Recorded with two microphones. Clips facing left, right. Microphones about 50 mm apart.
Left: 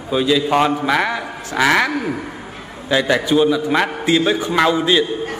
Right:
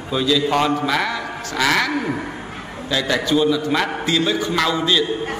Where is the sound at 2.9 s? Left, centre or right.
Left.